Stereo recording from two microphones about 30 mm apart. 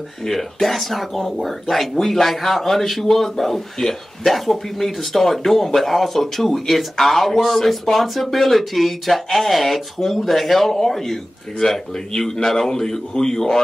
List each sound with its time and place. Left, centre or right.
0.3 s speech: centre